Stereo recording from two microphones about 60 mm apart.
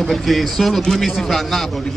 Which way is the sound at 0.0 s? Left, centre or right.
Centre.